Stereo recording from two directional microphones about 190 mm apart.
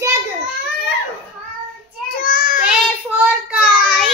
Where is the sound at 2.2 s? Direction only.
45° left (ahead or behind).